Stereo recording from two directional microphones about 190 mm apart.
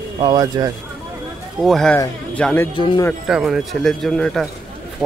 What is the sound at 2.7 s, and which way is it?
Speech, 25° left (ahead or behind).